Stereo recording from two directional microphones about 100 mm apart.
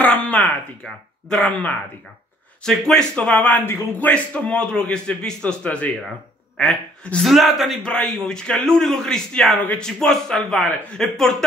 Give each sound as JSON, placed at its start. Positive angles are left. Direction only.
{"t": 0.0, "sound": "a sound", "side_deg": 15}
{"t": 0.8, "sound": "a man's voice", "side_deg": 5}
{"t": 6.5, "sound": "a woman's voice", "side_deg": 0}
{"t": 9.6, "sound": "a man's voice", "side_deg": 15}
{"t": 9.8, "sound": "speech", "side_deg": 5}